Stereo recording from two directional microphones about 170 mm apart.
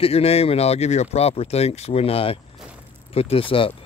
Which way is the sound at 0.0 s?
35° left (ahead or behind).